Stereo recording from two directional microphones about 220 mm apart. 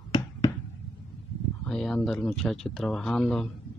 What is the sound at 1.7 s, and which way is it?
Speech, 5° left (ahead or behind).